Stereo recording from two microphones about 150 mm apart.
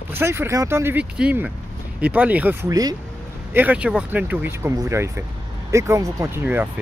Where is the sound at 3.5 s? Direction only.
10° right (ahead or behind).